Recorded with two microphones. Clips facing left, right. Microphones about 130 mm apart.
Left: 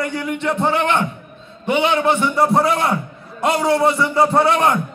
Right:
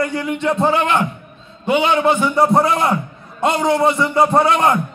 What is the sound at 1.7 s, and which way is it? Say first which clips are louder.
A man's voice: right 1 dB; centre (ahead or behind).